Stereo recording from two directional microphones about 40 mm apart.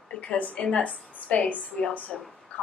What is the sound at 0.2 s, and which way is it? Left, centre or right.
A woman's voice, left.